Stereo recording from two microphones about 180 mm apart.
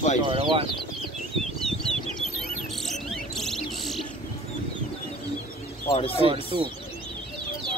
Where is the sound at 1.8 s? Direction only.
30° left (ahead or behind).